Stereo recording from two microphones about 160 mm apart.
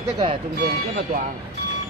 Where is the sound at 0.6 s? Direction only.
75° right (ahead or behind).